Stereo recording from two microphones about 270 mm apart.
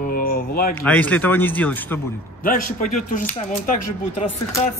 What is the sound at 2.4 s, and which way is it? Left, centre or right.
Speech, left.